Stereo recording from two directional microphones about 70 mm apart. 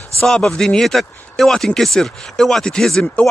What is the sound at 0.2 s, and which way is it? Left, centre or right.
Speech, centre.